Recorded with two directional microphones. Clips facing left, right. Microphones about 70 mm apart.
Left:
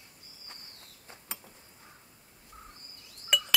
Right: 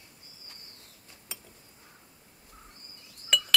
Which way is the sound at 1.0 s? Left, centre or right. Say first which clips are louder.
Left 4 dB; left.